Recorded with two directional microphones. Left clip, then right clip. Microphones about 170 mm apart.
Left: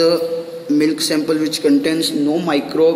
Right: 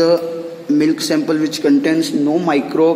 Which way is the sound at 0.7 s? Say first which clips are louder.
Right 1 dB; 60° right (ahead or behind).